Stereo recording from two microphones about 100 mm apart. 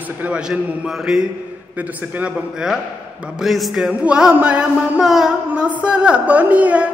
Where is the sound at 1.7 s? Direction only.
15° right (ahead or behind).